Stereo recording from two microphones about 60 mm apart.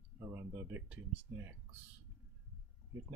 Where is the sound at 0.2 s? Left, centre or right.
Right.